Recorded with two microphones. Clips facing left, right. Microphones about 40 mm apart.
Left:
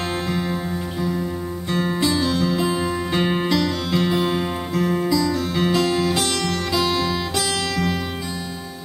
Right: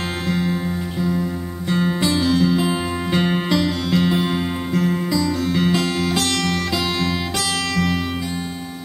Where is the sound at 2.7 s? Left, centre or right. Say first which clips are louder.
Even; centre.